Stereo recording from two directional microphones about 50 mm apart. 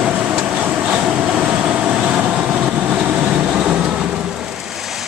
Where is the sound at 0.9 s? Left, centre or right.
Right.